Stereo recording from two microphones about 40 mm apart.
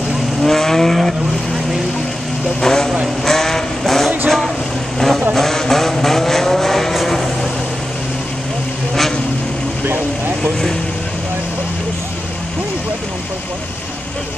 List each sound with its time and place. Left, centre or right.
0.4 s vehicle: centre
2.6 s vehicle: centre
9.8 s vehicle: right